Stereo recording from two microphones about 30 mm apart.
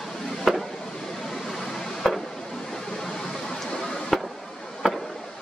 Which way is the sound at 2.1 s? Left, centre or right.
Centre.